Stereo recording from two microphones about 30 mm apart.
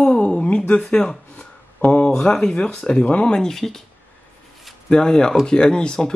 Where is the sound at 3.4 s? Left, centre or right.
Centre.